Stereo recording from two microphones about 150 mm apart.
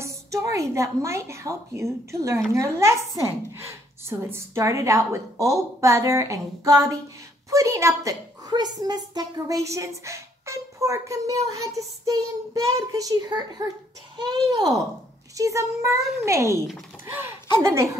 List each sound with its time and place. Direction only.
0.0 s a woman's voice: 20° right (ahead or behind)